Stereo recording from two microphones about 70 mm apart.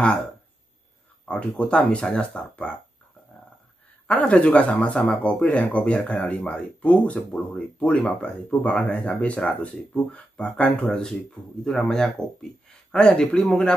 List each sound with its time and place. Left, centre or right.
0.0 s speech: centre
4.1 s speech: left
13.5 s speech: centre